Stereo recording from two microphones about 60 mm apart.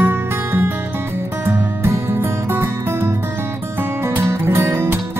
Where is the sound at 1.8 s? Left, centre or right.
Right.